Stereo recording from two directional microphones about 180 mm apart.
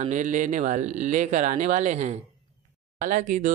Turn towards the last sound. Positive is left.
turn(degrees=-45)  # may be behind; listen again after turning